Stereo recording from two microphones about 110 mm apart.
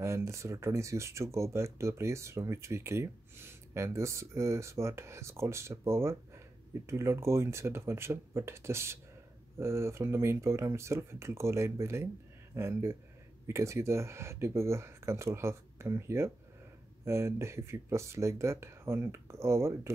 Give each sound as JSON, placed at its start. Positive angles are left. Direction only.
{"t": 0.0, "sound": "speech", "side_deg": -25}